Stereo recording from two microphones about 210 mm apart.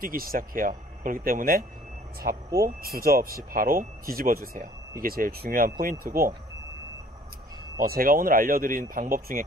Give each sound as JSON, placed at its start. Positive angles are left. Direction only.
{"t": 0.0, "sound": "speech", "side_deg": -45}
{"t": 7.8, "sound": "speech", "side_deg": -45}